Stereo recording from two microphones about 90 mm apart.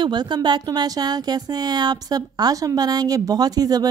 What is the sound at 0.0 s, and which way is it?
A woman's voice, 55° right (ahead or behind).